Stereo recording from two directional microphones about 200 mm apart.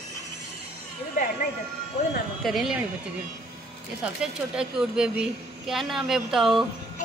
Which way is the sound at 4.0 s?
5° right (ahead or behind).